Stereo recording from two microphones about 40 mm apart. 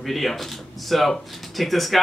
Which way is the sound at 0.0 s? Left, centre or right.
Centre.